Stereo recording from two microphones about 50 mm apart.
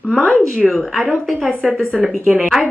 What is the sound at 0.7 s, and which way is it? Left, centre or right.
Speech, centre.